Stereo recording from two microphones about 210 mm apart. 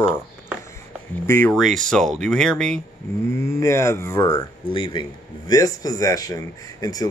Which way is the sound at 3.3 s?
15° left (ahead or behind).